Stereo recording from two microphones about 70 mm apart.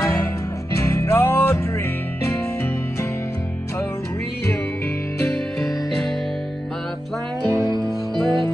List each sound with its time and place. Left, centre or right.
0.0 s music: left
7.5 s music: right
7.8 s music: centre